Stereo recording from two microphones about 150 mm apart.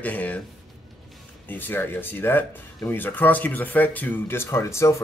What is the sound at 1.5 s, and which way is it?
Speech, 15° left (ahead or behind).